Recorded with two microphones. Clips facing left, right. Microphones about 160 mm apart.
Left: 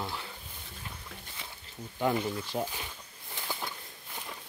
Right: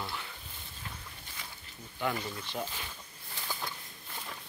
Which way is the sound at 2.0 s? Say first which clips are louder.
Left 5 dB; 20° left (ahead or behind).